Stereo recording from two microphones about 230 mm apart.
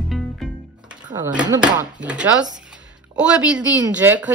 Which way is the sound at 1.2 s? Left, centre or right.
Centre.